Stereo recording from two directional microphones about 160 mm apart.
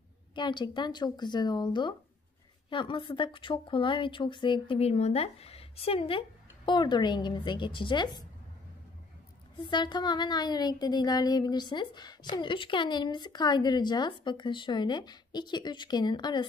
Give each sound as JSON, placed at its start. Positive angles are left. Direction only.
{"t": 0.3, "sound": "speech", "side_deg": 30}
{"t": 9.7, "sound": "speech", "side_deg": 25}